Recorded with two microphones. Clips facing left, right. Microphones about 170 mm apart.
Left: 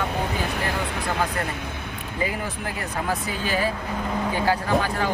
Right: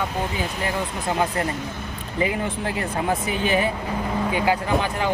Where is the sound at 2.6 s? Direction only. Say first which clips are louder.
Right 4 dB; 25° right (ahead or behind).